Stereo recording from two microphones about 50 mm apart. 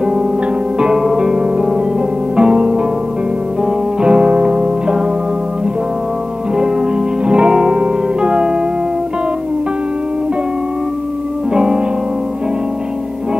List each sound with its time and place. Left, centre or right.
0.7 s music: centre
7.2 s music: centre
11.5 s music: centre